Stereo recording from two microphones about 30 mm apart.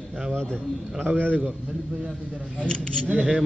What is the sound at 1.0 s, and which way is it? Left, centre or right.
Speech, right.